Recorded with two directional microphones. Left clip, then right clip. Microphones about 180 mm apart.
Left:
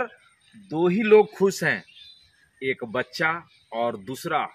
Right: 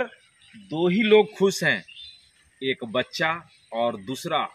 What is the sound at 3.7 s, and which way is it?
Speech, 10° left (ahead or behind).